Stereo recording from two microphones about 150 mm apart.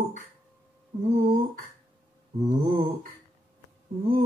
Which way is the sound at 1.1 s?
50° right (ahead or behind).